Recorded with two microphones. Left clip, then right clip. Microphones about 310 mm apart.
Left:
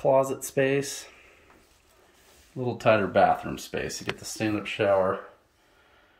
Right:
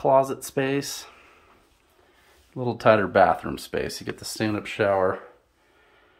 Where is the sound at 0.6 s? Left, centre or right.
Right.